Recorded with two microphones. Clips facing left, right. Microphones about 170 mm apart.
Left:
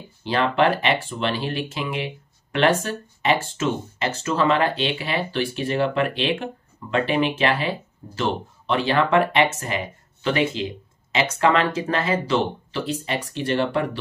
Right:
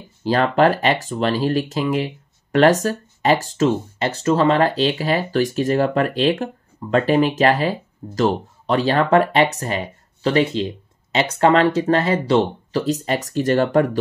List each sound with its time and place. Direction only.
0.2 s speech: 40° right (ahead or behind)